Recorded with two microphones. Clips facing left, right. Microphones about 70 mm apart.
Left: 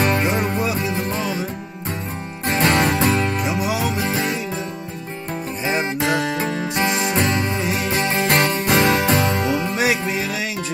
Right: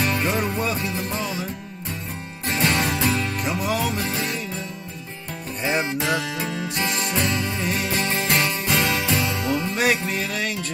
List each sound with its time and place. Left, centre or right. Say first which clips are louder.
0.0 s music: left 4 dB; left
0.6 s music: left 3 dB; centre
0.9 s music: left 4 dB; left
2.4 s music: left 5 dB; left
3.4 s music: left 2 dB; centre
4.0 s music: left 4 dB; left
5.6 s music: left 1 dB; centre
6.2 s music: left 5 dB; left
7.6 s music: left 3 dB; centre
8.3 s music: left 6 dB; left
9.8 s music: left 2 dB; centre